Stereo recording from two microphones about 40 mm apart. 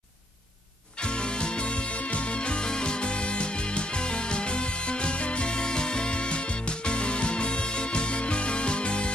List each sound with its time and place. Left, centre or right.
0.9 s music: left